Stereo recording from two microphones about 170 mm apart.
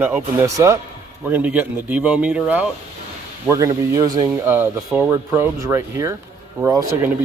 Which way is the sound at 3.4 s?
15° right (ahead or behind).